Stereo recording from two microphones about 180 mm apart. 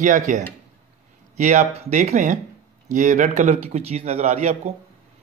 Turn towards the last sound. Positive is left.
turn(degrees=-40)  # may be behind; listen again after turning